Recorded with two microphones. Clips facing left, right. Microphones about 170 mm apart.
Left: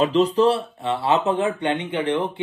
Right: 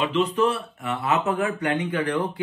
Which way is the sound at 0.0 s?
35° left (ahead or behind).